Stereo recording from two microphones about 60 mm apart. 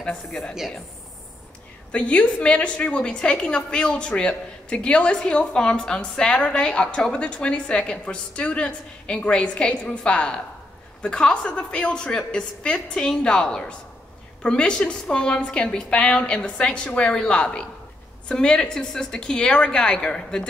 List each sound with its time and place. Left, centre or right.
0.0 s a woman's voice: centre
1.9 s a woman's voice: centre